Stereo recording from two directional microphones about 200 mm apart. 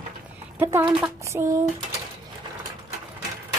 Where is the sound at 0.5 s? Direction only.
10° right (ahead or behind).